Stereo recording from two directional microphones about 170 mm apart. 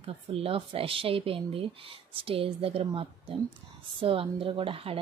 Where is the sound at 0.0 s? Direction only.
35° right (ahead or behind).